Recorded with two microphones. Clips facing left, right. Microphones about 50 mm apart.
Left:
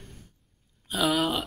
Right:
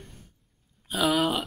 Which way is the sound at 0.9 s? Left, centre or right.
Centre.